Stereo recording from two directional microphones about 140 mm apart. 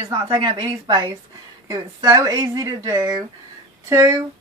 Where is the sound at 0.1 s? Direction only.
30° right (ahead or behind).